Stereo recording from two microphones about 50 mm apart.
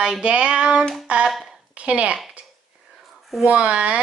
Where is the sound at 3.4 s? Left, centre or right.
Right.